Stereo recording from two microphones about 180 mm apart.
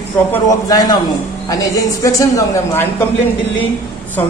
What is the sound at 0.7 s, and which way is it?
Speech, 20° left (ahead or behind).